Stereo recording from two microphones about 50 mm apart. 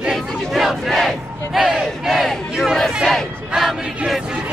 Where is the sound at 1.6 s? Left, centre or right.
Centre.